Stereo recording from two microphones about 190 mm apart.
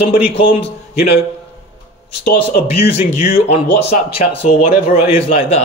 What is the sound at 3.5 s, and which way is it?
A man's voice, 30° left (ahead or behind).